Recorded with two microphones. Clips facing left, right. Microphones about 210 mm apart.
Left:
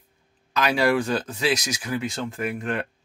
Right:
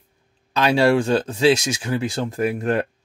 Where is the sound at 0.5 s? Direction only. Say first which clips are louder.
Right 4 dB; 30° right (ahead or behind).